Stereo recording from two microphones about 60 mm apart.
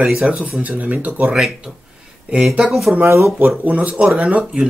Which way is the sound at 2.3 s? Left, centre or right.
Centre.